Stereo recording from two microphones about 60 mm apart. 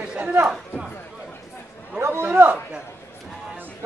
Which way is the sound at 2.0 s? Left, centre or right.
Right.